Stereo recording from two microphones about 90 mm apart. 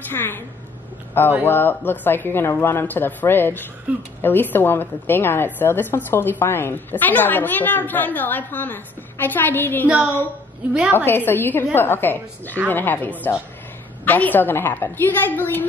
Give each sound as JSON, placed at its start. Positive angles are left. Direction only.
{"t": 0.1, "sound": "a woman's voice", "side_deg": 25}
{"t": 3.9, "sound": "speech", "side_deg": -15}
{"t": 4.2, "sound": "a woman's voice", "side_deg": 20}
{"t": 11.1, "sound": "a woman's voice", "side_deg": 25}